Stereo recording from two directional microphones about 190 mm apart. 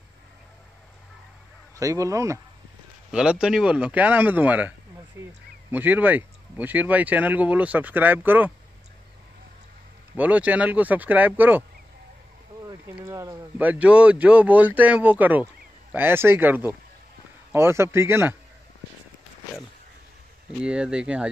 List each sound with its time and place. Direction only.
1.8 s speech: 15° right (ahead or behind)
3.1 s speech: 5° right (ahead or behind)
10.1 s speech: 10° right (ahead or behind)
12.6 s speech: 10° right (ahead or behind)
20.6 s speech: 5° right (ahead or behind)